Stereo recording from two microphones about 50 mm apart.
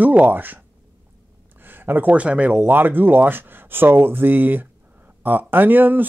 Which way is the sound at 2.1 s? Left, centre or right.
Right.